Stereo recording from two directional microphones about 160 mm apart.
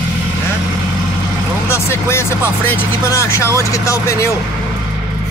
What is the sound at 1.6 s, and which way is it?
Speech, 15° left (ahead or behind).